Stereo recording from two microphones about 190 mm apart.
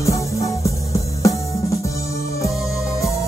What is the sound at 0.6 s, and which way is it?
Music, 15° left (ahead or behind).